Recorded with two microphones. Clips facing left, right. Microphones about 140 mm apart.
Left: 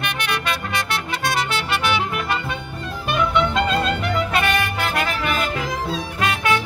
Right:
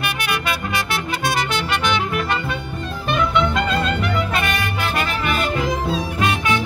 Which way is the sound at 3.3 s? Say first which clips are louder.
Even; 25° left (ahead or behind).